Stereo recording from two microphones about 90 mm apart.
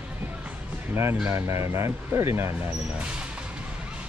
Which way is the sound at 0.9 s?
30° right (ahead or behind).